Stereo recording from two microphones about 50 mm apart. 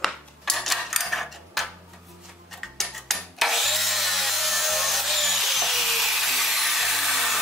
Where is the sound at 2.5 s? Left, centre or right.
Centre.